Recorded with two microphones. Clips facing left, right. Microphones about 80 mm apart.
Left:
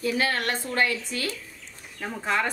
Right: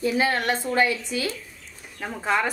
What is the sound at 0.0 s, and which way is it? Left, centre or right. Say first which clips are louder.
A woman's voice: right 3 dB; right.